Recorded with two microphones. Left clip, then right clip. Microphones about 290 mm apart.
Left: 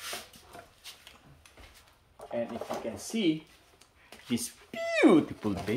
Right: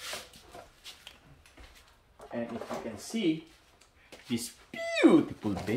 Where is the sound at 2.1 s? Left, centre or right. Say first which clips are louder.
Left 3 dB; left.